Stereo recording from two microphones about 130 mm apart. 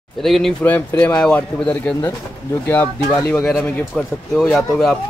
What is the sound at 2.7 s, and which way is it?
Speech, 15° left (ahead or behind).